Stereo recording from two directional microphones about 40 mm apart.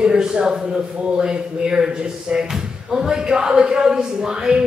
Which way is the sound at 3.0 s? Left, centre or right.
Centre.